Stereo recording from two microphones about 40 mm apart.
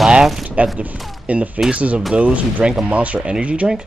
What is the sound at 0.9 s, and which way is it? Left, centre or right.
Speech, centre.